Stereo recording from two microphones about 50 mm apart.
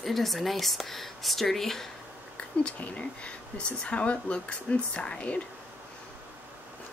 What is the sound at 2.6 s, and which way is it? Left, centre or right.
Speech, left.